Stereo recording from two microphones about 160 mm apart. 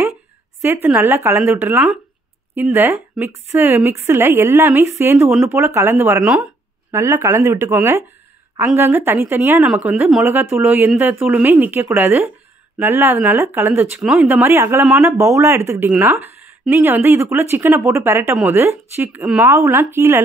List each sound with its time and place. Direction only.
0.8 s speech: 10° right (ahead or behind)
6.2 s a woman's voice: 5° right (ahead or behind)
6.9 s a woman's voice: 15° right (ahead or behind)